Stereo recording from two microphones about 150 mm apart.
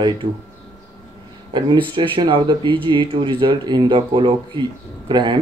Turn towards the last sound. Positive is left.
turn(degrees=-30)  # may be behind; listen again after turning